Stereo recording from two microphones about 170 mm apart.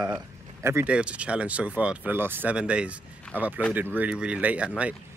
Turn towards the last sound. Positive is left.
turn(degrees=-5)  # may be behind; listen again after turning